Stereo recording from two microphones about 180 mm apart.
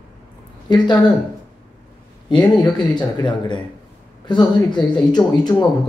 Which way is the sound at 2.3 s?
25° left (ahead or behind).